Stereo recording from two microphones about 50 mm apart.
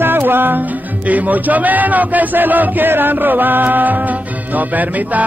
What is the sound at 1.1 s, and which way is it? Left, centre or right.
Speech, right.